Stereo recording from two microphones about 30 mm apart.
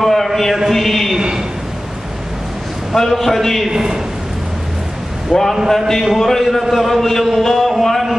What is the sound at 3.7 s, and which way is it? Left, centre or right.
Speech, right.